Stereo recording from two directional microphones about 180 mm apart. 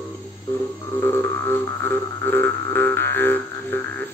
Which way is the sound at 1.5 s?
10° left (ahead or behind).